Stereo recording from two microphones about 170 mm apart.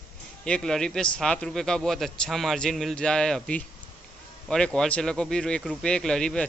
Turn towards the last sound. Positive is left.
turn(degrees=5)  # may be behind; listen again after turning